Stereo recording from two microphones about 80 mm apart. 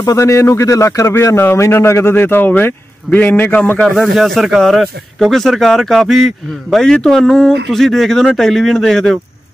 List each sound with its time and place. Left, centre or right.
0.0 s speech: left
3.9 s speech: centre